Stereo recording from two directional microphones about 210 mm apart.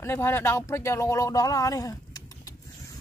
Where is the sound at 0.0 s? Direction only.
10° left (ahead or behind).